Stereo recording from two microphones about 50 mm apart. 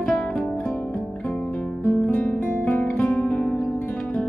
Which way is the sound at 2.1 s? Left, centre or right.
Left.